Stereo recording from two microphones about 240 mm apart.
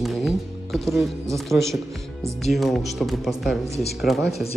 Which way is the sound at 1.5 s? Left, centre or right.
Centre.